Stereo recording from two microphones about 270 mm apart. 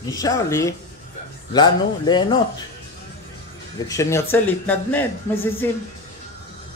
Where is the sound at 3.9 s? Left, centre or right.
Centre.